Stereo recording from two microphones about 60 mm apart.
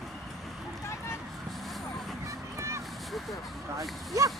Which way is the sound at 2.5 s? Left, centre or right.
Right.